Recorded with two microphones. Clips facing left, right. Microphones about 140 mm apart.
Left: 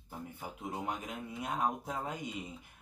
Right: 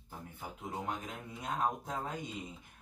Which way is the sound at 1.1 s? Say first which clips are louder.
Left 2 dB; centre (ahead or behind).